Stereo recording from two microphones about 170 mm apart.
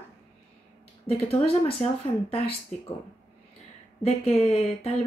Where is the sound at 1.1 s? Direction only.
35° left (ahead or behind).